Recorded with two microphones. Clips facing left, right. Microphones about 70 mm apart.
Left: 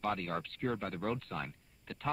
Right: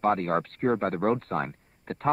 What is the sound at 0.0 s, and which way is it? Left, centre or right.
Speech, right.